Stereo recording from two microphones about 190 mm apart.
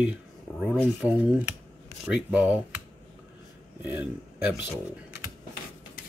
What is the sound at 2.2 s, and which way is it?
Speech, 5° right (ahead or behind).